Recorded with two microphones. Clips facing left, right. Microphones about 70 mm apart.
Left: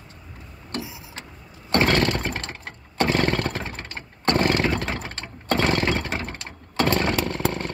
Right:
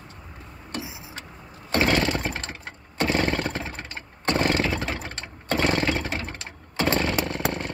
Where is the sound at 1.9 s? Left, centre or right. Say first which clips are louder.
Left 1 dB; centre.